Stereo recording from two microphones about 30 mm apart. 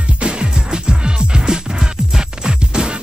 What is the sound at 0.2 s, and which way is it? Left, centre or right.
Music, right.